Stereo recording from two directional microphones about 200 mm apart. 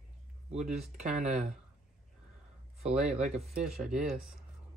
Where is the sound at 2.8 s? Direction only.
30° right (ahead or behind).